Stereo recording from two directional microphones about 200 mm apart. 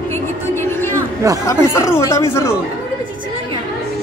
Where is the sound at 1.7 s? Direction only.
15° left (ahead or behind).